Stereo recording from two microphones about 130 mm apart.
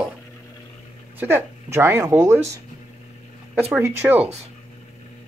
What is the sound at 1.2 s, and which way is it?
Speech, 20° right (ahead or behind).